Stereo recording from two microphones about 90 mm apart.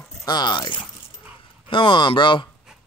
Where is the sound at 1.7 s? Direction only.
70° left (ahead or behind).